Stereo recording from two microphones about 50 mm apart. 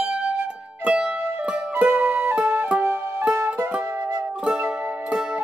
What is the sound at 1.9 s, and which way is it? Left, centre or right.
Music, right.